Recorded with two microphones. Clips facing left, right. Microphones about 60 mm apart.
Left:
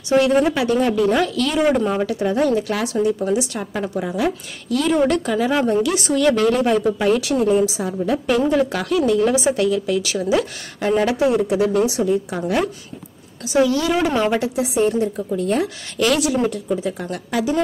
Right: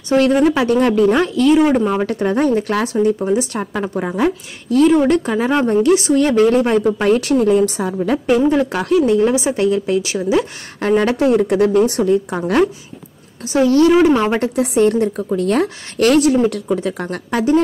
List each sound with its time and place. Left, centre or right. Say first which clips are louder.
0.2 s a woman's voice: right 6 dB; right
1.1 s speech: right 6 dB; right
2.0 s a woman's voice: right 2 dB; right
8.5 s speech: right 3 dB; right
10.8 s a woman's voice: right 3 dB; right
13.5 s a woman's voice: right 5 dB; right
14.4 s speech: right 4 dB; right
15.6 s a woman's voice: right 5 dB; right
16.4 s speech: right 4 dB; right